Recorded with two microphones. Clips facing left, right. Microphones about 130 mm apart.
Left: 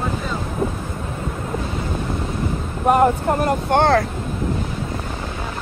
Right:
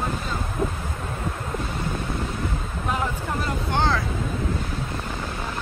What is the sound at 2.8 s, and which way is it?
Speech, 55° left (ahead or behind).